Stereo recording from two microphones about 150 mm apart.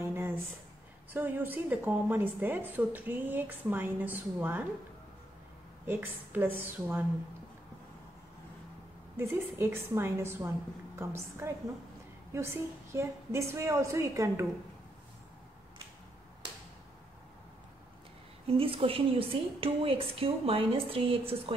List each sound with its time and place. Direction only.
0.0 s a sound: 15° right (ahead or behind)
1.1 s a woman's voice: 10° right (ahead or behind)
5.9 s a woman's voice: 10° right (ahead or behind)
9.1 s a woman's voice: 15° right (ahead or behind)
18.5 s a woman's voice: 40° right (ahead or behind)